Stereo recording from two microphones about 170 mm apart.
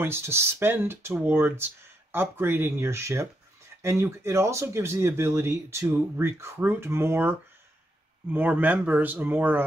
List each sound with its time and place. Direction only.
0.0 s speech: 15° right (ahead or behind)